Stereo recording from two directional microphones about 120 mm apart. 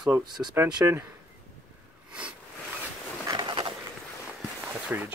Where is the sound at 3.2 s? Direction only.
40° right (ahead or behind).